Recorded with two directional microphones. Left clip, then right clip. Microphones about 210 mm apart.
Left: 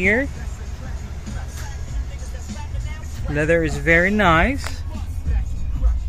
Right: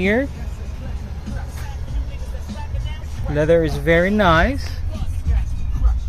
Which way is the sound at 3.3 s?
5° right (ahead or behind).